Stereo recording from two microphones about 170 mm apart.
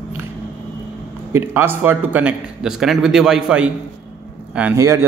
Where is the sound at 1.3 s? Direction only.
15° right (ahead or behind).